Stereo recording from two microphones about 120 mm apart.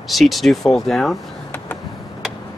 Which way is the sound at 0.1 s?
Centre (ahead or behind).